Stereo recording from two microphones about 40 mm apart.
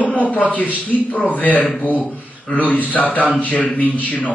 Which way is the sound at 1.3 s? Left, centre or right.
Left.